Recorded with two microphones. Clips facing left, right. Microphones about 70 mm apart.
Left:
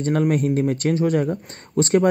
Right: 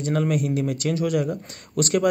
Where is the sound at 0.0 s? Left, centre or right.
Left.